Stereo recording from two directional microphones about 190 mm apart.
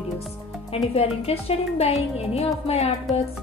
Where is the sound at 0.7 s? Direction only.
30° left (ahead or behind).